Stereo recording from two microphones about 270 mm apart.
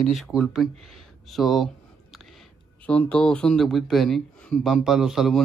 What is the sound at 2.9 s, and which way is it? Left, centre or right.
Speech, centre.